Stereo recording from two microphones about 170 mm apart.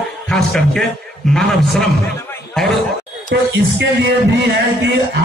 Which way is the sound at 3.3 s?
80° right.